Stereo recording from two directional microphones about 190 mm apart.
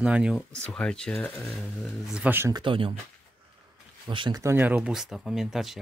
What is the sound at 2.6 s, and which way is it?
Speech, 25° right (ahead or behind).